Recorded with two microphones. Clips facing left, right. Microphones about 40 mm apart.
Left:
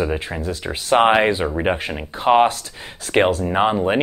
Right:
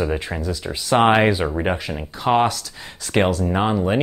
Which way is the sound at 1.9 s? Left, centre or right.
Left.